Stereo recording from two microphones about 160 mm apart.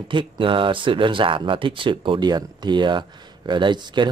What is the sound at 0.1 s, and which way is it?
Speech, 30° right (ahead or behind).